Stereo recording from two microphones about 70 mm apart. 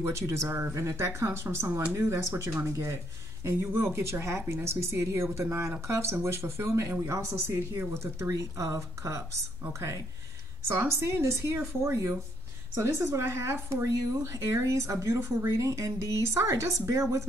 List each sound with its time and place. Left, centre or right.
0.0 s speech: right
10.7 s speech: right